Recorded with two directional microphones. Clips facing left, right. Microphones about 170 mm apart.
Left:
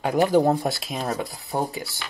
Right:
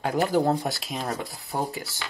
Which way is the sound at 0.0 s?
15° left (ahead or behind).